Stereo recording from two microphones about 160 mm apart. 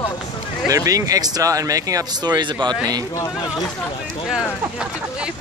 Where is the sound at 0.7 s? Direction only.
20° right (ahead or behind).